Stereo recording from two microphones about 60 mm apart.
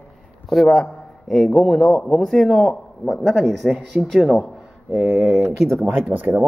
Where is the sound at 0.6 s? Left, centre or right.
Centre.